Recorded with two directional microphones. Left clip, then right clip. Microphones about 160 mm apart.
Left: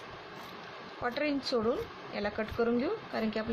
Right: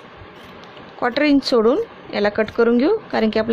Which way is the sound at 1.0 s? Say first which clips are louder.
Right 15 dB; 75° right (ahead or behind).